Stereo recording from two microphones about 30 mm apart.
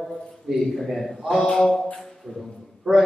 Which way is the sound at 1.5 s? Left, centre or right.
Centre.